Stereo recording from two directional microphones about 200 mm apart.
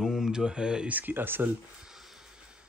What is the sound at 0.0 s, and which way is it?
Speech, 5° right (ahead or behind).